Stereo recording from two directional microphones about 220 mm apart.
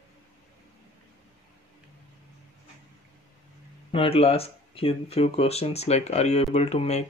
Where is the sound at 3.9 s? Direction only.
25° left (ahead or behind).